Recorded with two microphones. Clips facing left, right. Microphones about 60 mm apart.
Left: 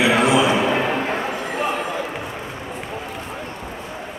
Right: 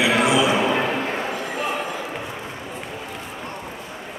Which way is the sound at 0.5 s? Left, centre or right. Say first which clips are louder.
Left 1 dB; centre.